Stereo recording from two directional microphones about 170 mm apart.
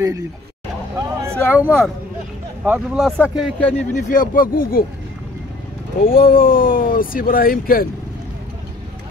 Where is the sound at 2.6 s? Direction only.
10° right (ahead or behind).